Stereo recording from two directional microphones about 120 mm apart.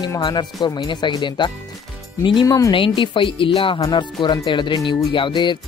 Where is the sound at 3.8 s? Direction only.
35° left (ahead or behind).